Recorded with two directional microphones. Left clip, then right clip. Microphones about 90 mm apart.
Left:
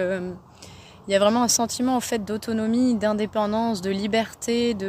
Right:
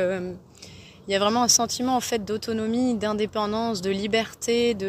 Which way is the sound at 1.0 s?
65° left (ahead or behind).